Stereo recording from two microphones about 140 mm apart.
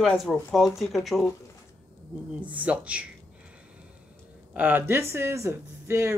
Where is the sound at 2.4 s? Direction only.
10° right (ahead or behind).